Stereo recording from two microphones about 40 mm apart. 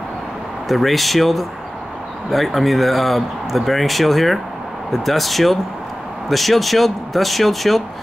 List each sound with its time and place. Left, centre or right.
0.7 s speech: centre